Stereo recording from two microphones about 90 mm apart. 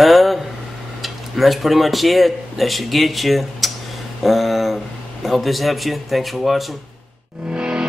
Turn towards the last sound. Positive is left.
turn(degrees=-10)  # may be behind; listen again after turning